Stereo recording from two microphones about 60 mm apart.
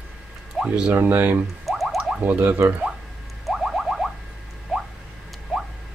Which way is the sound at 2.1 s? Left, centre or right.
Right.